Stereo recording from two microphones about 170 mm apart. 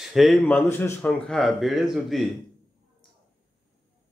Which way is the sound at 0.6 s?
15° left (ahead or behind).